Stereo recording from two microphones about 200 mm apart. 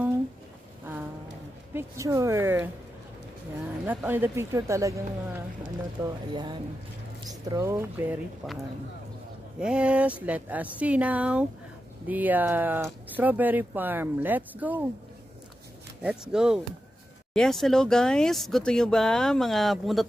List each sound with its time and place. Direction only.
1.7 s speech: 15° right (ahead or behind)
3.8 s speech: 10° right (ahead or behind)
9.6 s speech: 5° right (ahead or behind)
16.0 s speech: 5° right (ahead or behind)